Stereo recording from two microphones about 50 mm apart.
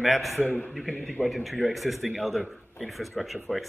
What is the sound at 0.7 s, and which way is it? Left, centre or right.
Speech, centre.